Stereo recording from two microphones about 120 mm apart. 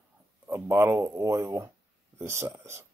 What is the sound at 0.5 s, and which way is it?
Speech, 20° right (ahead or behind).